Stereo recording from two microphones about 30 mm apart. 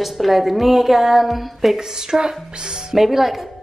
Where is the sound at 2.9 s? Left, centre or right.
Centre.